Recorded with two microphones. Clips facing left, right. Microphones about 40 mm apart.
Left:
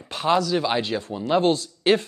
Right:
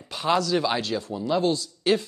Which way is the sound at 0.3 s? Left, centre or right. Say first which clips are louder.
Left 2 dB; centre.